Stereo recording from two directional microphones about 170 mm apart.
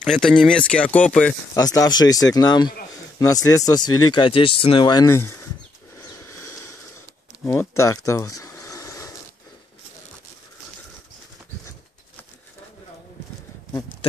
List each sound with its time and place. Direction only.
0.0 s speech: 5° left (ahead or behind)
1.5 s speech: 20° left (ahead or behind)
7.4 s a sound: 15° left (ahead or behind)